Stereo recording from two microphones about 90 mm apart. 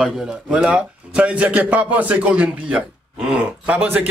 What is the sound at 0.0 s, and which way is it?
A man's voice, 5° right (ahead or behind).